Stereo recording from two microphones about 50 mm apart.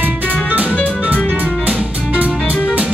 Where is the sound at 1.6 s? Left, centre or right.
Right.